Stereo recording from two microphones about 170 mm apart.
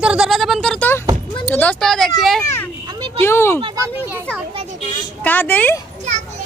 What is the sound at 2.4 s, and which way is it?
A woman's voice, 15° left (ahead or behind).